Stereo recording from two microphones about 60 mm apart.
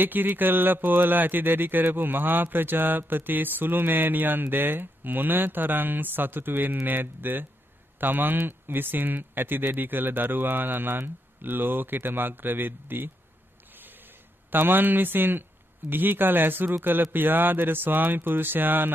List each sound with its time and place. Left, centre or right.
0.0 s speech: right
13.7 s a sound: right
15.9 s speech: right